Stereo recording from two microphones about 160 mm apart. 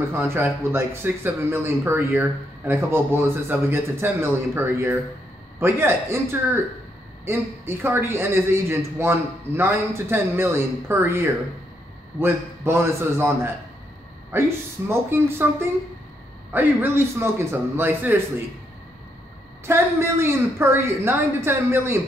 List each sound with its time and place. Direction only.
0.1 s speech: 15° right (ahead or behind)
19.6 s speech: 15° right (ahead or behind)